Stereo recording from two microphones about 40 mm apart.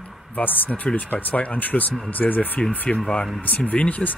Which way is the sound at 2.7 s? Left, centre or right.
Left.